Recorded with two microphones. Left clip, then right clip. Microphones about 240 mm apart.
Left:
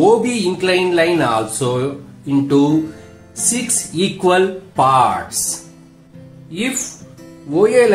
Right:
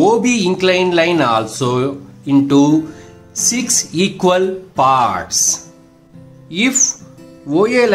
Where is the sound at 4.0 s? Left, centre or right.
Right.